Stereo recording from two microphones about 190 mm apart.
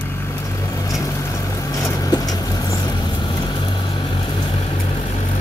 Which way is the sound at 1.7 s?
20° left (ahead or behind).